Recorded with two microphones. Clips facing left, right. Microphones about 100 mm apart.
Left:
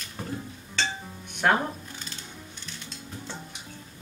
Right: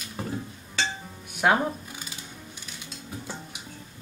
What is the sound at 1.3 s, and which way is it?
Music, 5° right (ahead or behind).